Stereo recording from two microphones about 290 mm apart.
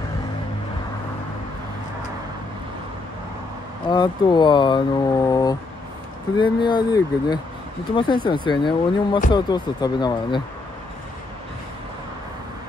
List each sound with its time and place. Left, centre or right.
3.9 s speech: centre